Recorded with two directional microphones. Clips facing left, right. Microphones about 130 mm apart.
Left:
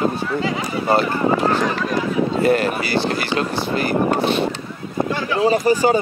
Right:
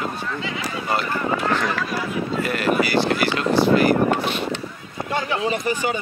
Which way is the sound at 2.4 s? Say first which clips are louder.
Left 1 dB; 30° left (ahead or behind).